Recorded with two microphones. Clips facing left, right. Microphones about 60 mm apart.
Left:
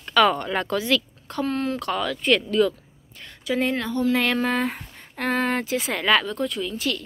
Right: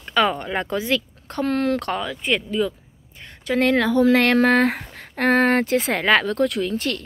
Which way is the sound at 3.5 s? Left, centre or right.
Right.